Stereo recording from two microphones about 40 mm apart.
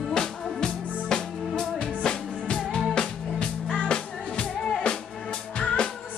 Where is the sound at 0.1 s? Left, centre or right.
Centre.